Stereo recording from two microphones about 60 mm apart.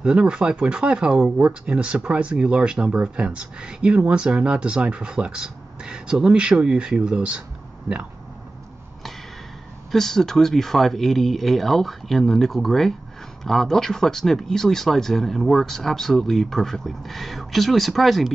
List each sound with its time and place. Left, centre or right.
0.0 s speech: centre
9.8 s speech: centre